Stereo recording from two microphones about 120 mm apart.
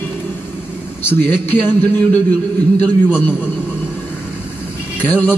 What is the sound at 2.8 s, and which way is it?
Speech, 15° left (ahead or behind).